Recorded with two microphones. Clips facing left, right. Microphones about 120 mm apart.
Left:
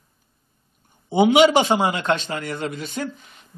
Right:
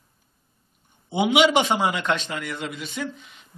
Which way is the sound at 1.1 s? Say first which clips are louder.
Left 5 dB; 40° left (ahead or behind).